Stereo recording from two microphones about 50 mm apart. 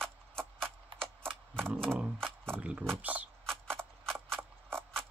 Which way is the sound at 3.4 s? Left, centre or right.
Centre.